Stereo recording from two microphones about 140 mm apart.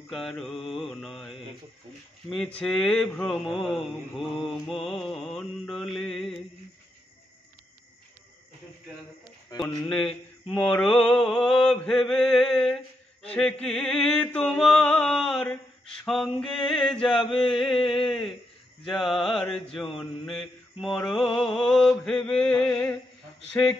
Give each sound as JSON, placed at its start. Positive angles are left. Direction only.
{"t": 0.1, "sound": "mantra", "side_deg": 0}
{"t": 9.5, "sound": "speech", "side_deg": 30}
{"t": 9.8, "sound": "mantra", "side_deg": 5}
{"t": 13.3, "sound": "chant", "side_deg": 10}
{"t": 16.1, "sound": "mantra", "side_deg": 0}
{"t": 19.6, "sound": "chant", "side_deg": 10}
{"t": 20.0, "sound": "mantra", "side_deg": 0}